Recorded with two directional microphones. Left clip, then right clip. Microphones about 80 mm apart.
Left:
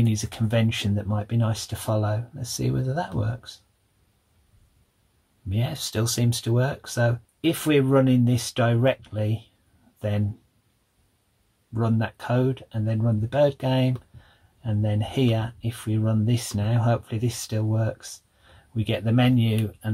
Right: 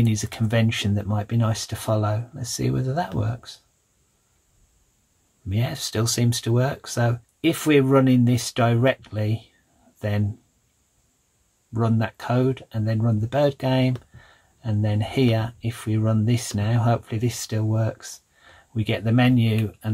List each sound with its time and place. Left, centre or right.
0.0 s speech: right
5.5 s speech: right
11.7 s speech: right